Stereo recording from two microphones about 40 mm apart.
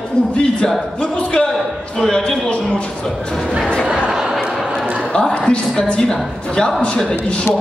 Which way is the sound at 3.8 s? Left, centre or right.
Right.